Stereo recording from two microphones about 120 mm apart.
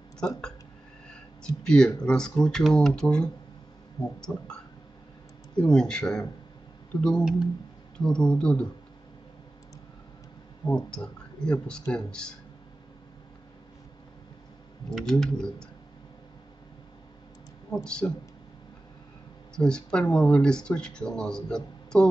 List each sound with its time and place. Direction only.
0.2 s speech: 5° left (ahead or behind)
1.6 s speech: 5° left (ahead or behind)
5.6 s speech: 5° left (ahead or behind)
10.7 s speech: 10° left (ahead or behind)
14.9 s speech: centre (ahead or behind)
17.6 s speech: 5° left (ahead or behind)
19.5 s speech: 5° left (ahead or behind)